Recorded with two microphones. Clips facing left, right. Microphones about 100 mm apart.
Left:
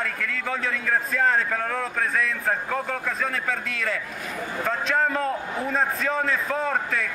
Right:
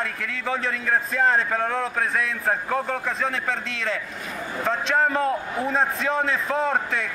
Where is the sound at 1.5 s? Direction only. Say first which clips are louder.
Right 3 dB; 20° right (ahead or behind).